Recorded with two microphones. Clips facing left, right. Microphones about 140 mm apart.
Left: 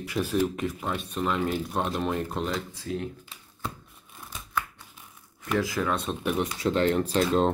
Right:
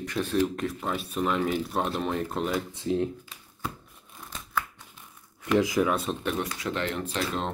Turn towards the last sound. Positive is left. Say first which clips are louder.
# left 7 dB
turn(degrees=40)  # may be behind; listen again after turning